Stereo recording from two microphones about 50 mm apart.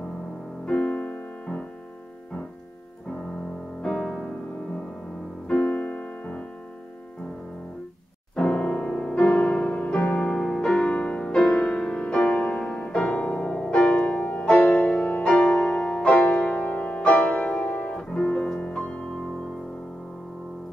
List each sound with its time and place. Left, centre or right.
0.7 s music: left
3.8 s music: centre
5.5 s piano: left
8.4 s music: centre
18.6 s music: left